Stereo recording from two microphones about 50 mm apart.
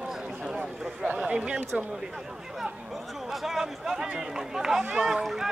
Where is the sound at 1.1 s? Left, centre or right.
Centre.